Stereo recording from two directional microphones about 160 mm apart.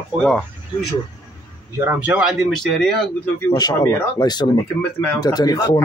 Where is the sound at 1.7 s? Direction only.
15° right (ahead or behind); by 2.9 s centre (ahead or behind).